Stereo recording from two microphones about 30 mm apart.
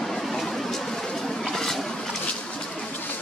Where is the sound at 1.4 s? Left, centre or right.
Centre.